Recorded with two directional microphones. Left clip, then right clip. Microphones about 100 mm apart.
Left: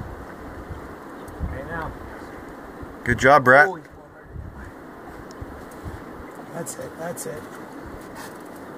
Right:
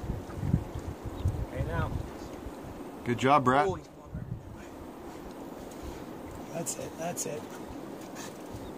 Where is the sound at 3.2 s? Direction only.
20° left (ahead or behind).